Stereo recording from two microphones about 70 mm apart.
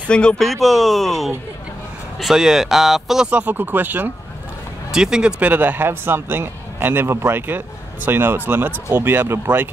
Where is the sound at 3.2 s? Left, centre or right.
Centre.